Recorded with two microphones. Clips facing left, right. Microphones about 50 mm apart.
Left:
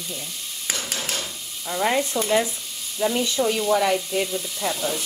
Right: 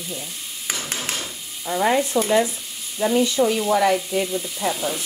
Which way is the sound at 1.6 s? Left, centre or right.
Centre.